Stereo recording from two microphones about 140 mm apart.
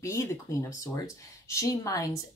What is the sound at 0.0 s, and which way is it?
Speech, 20° left (ahead or behind).